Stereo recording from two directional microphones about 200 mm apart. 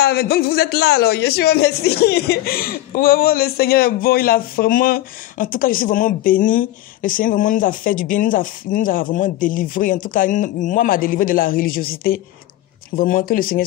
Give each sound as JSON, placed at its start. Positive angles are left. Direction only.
{"t": 0.0, "sound": "a man's voice", "side_deg": 50}